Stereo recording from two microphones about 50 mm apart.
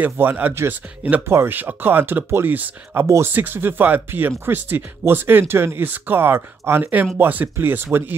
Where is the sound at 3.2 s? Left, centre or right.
Right.